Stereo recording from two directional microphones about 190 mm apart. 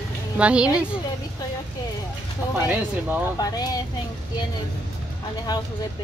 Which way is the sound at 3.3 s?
20° left (ahead or behind).